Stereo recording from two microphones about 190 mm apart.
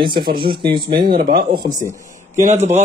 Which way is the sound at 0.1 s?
50° right (ahead or behind).